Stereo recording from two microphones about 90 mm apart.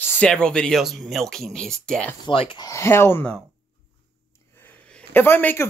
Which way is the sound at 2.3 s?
80° left.